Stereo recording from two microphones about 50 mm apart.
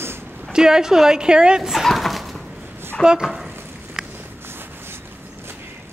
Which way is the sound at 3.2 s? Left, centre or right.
Centre.